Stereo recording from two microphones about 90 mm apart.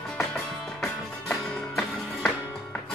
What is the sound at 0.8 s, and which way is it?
Music, 5° left (ahead or behind).